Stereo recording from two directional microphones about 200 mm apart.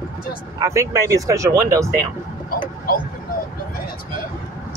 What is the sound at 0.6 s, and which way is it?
Speech, 15° right (ahead or behind).